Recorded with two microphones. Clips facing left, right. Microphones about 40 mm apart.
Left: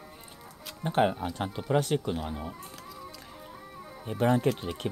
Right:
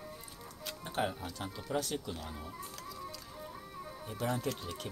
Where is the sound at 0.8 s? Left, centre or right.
Left.